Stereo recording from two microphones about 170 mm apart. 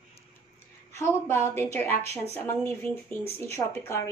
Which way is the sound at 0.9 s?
15° left (ahead or behind).